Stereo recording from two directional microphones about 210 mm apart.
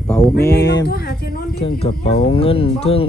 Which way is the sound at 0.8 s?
50° left (ahead or behind).